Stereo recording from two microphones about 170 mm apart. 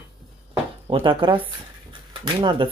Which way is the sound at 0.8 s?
30° right (ahead or behind).